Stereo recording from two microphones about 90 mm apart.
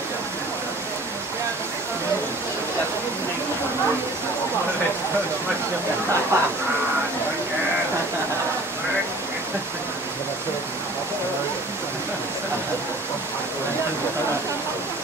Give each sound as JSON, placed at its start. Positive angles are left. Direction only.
{"t": 6.3, "sound": "speech", "side_deg": -30}